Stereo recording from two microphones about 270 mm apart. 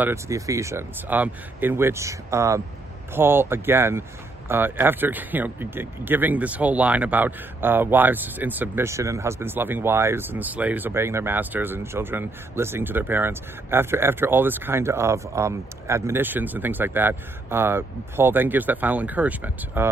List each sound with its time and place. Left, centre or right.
0.0 s speech: centre